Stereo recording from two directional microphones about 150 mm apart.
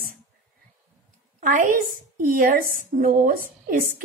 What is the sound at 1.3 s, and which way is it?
A woman's voice, 60° right (ahead or behind).